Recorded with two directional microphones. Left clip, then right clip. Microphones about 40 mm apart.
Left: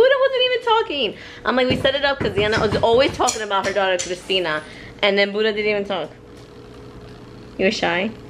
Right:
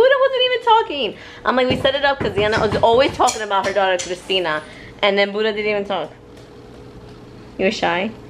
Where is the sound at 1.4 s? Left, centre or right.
Centre.